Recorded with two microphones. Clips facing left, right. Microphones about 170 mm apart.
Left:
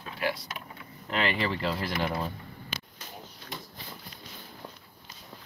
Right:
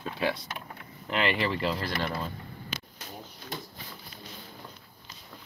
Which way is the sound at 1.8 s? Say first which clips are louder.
Left 2 dB; 10° left (ahead or behind).